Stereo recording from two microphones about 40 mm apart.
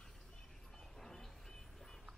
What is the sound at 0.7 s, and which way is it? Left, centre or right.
Music, centre.